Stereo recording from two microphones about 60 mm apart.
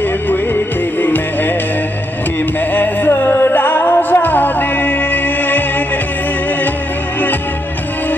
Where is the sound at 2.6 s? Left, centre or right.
Left.